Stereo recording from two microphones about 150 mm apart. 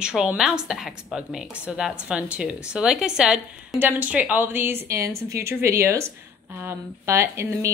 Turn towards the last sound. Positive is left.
turn(degrees=-20)  # may be behind; listen again after turning